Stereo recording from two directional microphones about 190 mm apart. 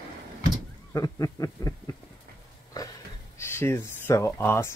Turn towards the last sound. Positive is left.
turn(degrees=10)  # may be behind; listen again after turning